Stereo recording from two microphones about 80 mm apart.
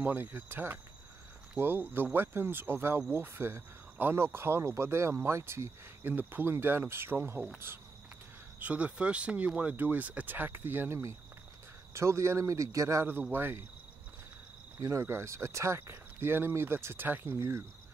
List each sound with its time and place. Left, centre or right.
0.0 s speech: right
3.1 s cricket: right
8.5 s speech: centre
11.9 s cricket: right
13.3 s speech: right
14.8 s cricket: right